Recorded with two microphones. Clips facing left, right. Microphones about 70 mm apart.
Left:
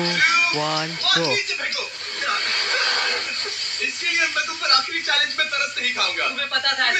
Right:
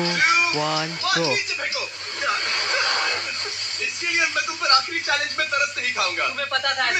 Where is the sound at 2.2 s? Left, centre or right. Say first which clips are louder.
Even; centre.